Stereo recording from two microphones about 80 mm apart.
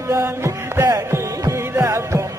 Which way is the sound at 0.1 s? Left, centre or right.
Right.